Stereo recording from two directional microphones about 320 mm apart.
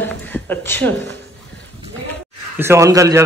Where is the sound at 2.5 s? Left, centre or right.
Centre.